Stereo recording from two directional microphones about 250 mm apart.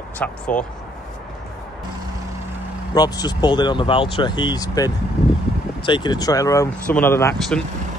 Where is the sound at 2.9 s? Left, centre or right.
Centre.